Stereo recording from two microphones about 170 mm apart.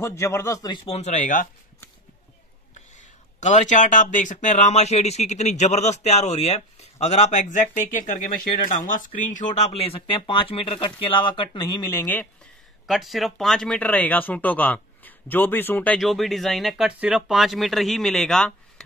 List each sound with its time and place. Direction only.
0.0 s speech: 15° left (ahead or behind)
0.8 s speech: 40° left (ahead or behind)
3.3 s speech: 45° left (ahead or behind); by 12.3 s 15° left (ahead or behind)
12.8 s speech: centre (ahead or behind)